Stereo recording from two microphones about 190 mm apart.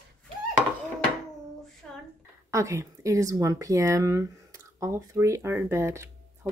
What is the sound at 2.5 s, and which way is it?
Speech, 15° right (ahead or behind).